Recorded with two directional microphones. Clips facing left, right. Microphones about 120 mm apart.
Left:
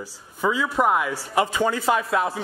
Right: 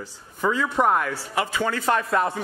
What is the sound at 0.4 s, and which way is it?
Speech, 5° left (ahead or behind).